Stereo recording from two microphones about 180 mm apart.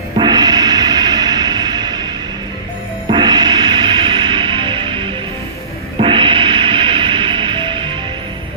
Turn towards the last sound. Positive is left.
turn(degrees=-25)  # may be behind; listen again after turning